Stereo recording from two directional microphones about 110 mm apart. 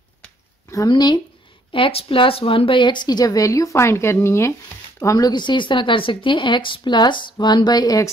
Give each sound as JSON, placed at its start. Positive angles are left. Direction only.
{"t": 0.8, "sound": "speech", "side_deg": 40}
{"t": 1.7, "sound": "a woman's voice", "side_deg": 55}